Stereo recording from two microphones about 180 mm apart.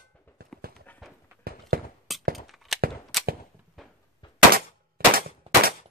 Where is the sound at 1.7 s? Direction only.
55° right (ahead or behind).